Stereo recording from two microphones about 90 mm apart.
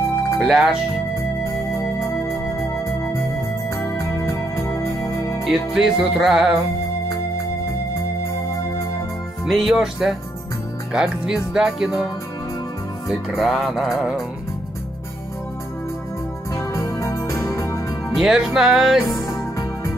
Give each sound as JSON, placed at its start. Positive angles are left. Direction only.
{"t": 0.4, "sound": "music", "side_deg": 0}
{"t": 1.7, "sound": "organ", "side_deg": 30}
{"t": 3.7, "sound": "music", "side_deg": 35}
{"t": 5.4, "sound": "music", "side_deg": -5}
{"t": 9.5, "sound": "music", "side_deg": 0}
{"t": 10.9, "sound": "speech", "side_deg": -10}
{"t": 13.3, "sound": "music", "side_deg": 0}
{"t": 16.5, "sound": "music", "side_deg": 35}
{"t": 18.1, "sound": "music", "side_deg": -5}